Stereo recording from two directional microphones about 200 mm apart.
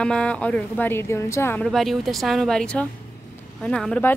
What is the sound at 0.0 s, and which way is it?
A woman's voice, 5° left (ahead or behind).